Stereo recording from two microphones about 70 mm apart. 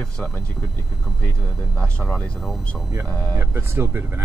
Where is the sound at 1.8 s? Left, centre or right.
Centre.